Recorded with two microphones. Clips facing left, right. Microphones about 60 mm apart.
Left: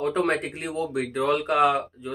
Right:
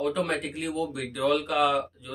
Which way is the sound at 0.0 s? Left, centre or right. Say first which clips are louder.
Left 3 dB; left.